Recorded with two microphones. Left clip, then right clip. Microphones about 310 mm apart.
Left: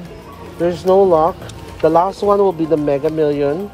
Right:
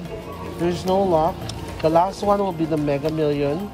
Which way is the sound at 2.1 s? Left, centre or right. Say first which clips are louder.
Left 7 dB; left.